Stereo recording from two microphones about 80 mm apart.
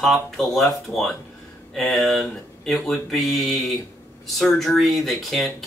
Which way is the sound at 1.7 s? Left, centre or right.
Centre.